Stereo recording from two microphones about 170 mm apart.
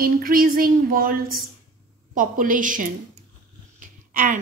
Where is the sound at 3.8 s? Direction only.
55° right (ahead or behind).